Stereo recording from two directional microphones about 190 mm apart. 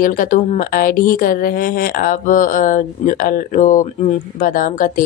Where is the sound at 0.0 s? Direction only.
45° left (ahead or behind).